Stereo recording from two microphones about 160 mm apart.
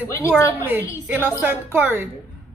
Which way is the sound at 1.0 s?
15° right (ahead or behind).